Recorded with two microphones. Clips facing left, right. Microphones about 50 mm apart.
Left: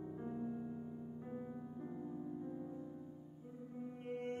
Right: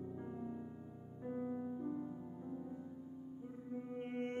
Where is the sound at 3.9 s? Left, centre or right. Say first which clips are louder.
Right 2 dB; right.